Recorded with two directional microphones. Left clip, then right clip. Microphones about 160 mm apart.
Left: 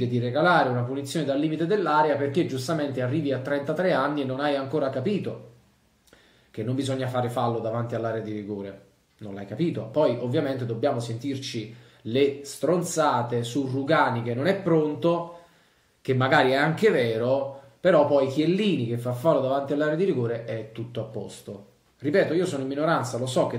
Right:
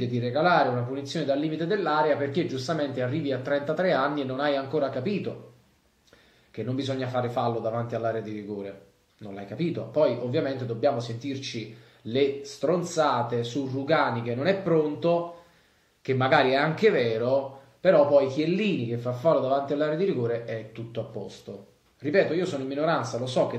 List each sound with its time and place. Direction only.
0.0 s speech: 20° left (ahead or behind)
6.5 s speech: 15° left (ahead or behind)